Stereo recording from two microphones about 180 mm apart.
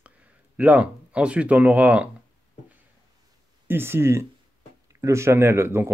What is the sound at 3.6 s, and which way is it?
Speech, 15° right (ahead or behind).